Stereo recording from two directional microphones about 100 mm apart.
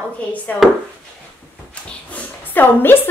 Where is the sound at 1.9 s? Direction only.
15° left (ahead or behind).